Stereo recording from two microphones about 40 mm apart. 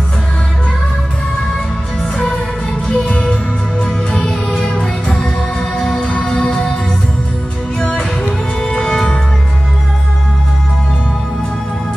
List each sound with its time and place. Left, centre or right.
2.9 s music: left
4.3 s music: centre
7.9 s music: left
8.5 s music: centre